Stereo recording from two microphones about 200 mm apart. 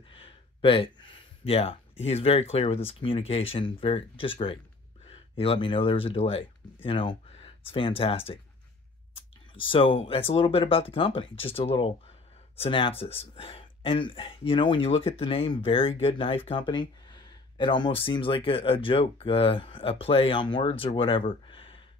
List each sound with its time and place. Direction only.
0.1 s speech: 25° left (ahead or behind)